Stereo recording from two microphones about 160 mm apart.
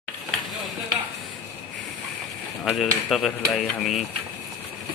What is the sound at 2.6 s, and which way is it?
Speech, 5° right (ahead or behind).